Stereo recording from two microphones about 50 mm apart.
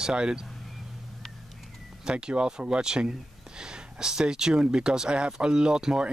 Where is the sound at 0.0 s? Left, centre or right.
Centre.